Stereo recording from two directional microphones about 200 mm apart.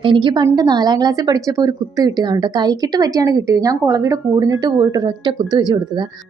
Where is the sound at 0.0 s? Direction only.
25° right (ahead or behind).